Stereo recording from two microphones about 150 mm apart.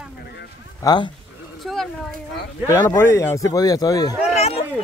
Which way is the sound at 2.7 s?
15° left (ahead or behind).